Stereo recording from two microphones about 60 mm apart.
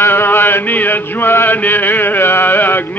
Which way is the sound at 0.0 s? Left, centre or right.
Left.